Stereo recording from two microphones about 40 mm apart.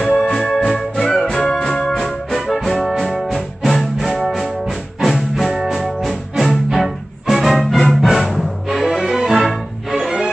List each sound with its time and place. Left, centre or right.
0.3 s music: centre
1.9 s music: centre